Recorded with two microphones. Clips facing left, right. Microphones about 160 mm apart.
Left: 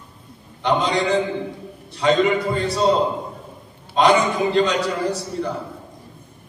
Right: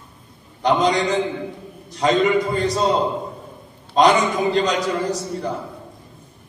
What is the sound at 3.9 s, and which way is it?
A man's voice, 40° right (ahead or behind).